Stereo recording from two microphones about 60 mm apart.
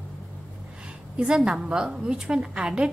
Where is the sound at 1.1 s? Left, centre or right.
Centre.